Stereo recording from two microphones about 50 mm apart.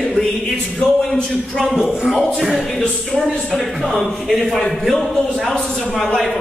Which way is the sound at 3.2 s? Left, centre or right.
Centre.